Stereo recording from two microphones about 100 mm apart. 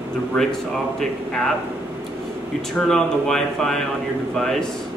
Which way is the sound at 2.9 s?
5° left (ahead or behind).